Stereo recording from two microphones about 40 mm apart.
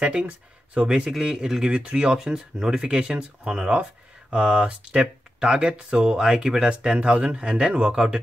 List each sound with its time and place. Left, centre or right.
0.1 s speech: right
1.2 s speech: centre
2.1 s speech: centre